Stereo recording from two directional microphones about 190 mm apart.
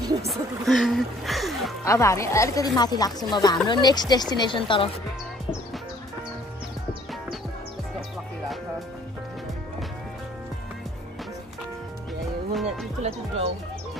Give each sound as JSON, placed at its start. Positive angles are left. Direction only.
{"t": 0.3, "sound": "speech", "side_deg": 0}
{"t": 1.9, "sound": "speech", "side_deg": 15}
{"t": 12.6, "sound": "speech", "side_deg": -35}